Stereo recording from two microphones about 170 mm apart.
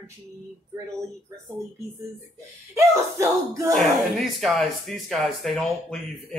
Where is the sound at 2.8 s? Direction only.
15° right (ahead or behind).